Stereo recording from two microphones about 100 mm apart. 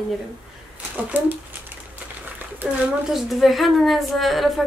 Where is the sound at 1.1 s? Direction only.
20° right (ahead or behind).